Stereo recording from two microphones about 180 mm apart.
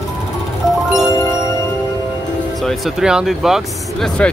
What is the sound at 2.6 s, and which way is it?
Speech, centre (ahead or behind).